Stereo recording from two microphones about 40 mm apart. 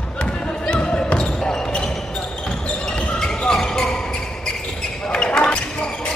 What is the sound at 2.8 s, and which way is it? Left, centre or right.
Basketball bounce, centre.